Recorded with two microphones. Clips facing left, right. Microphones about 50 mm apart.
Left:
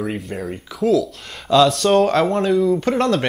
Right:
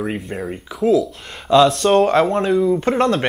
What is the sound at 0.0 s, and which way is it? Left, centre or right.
Speech, centre.